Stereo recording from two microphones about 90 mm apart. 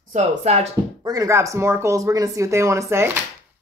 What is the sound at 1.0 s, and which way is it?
Speech, 40° right (ahead or behind).